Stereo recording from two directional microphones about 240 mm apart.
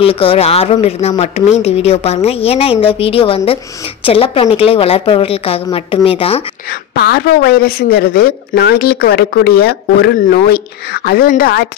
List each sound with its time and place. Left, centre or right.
0.0 s speech: left
7.0 s speech: left